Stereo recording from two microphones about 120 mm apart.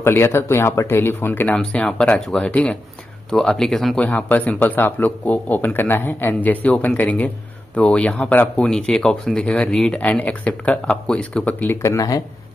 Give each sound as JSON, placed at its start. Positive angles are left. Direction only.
{"t": 0.0, "sound": "speech", "side_deg": 20}